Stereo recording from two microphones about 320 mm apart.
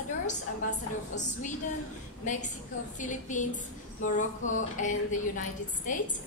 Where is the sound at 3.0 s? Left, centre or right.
Left.